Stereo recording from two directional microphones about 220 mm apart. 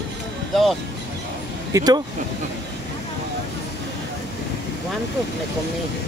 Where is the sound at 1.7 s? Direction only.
15° right (ahead or behind).